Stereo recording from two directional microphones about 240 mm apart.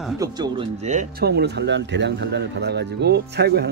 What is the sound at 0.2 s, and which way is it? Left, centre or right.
Speech, centre.